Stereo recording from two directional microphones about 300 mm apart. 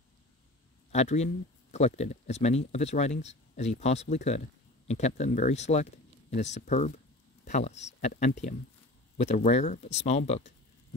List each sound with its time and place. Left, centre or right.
0.9 s speech: left